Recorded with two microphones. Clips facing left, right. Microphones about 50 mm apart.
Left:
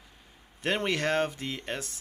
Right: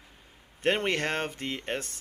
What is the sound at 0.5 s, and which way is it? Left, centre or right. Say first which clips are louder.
Speech: right 2 dB; right.